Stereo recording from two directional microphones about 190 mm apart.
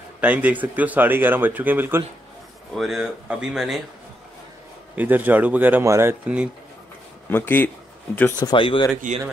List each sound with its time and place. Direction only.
0.2 s speech: 10° right (ahead or behind)
2.7 s speech: centre (ahead or behind)
4.9 s speech: 10° right (ahead or behind)
7.2 s speech: 10° left (ahead or behind)
8.4 s speech: 25° left (ahead or behind)